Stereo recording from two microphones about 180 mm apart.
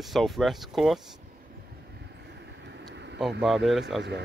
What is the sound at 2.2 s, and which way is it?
Vehicle, 70° right (ahead or behind).